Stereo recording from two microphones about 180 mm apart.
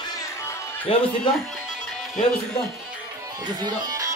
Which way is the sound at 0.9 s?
35° left (ahead or behind).